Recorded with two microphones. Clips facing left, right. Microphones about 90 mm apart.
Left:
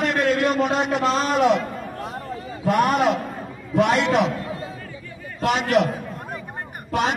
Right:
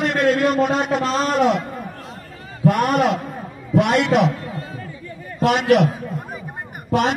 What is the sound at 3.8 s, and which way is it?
Vehicle, 60° right (ahead or behind).